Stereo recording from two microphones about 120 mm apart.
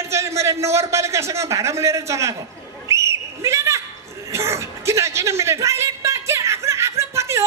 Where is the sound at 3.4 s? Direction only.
25° right (ahead or behind).